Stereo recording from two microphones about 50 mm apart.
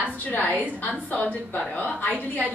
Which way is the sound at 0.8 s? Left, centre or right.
Left.